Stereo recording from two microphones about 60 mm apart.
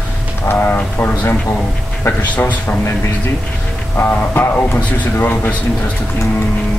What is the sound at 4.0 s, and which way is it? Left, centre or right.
A man's voice, left.